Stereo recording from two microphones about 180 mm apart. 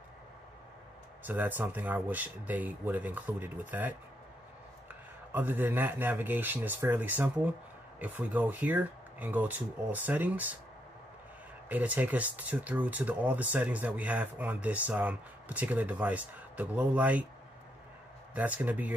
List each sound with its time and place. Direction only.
1.2 s speech: 10° right (ahead or behind)
5.3 s speech: 10° right (ahead or behind)
11.7 s speech: 10° right (ahead or behind)
18.3 s speech: 10° right (ahead or behind)